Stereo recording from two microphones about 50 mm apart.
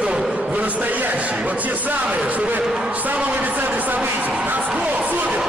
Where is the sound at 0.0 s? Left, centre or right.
Centre.